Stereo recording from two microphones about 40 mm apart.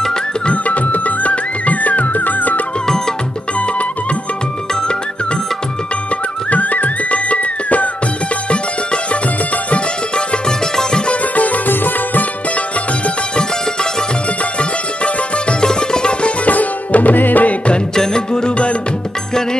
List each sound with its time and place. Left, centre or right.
0.5 s music: left
3.5 s music: left
6.5 s music: left
11.3 s music: left
14.6 s music: left
16.4 s music: left
17.9 s music: centre